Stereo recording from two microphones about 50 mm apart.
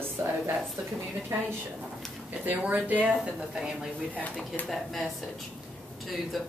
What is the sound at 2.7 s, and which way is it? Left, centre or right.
Speech, right.